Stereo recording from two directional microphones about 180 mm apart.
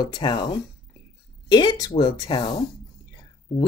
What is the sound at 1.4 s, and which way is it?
Speech, 25° left (ahead or behind).